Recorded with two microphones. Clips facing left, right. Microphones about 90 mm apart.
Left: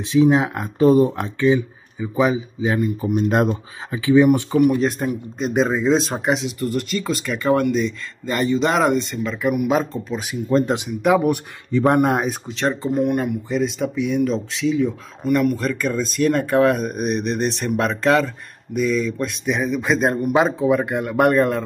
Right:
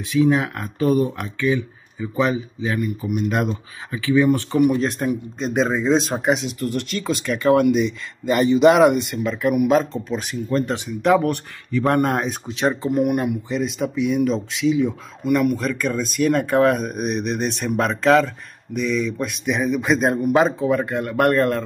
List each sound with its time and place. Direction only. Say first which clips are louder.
0.0 s speech: left 2 dB; 20° left (ahead or behind)
2.0 s speech: left 2 dB; 10° left (ahead or behind)
2.6 s speech: left 5 dB; 25° left (ahead or behind)
4.6 s speech: left 1 dB; centre (ahead or behind)
10.5 s speech: left 4 dB; 20° left (ahead or behind)
11.0 s speech: even; 5° left (ahead or behind)
11.7 s speech: left 2 dB; 15° left (ahead or behind)
12.3 s speech: right 1 dB; centre (ahead or behind)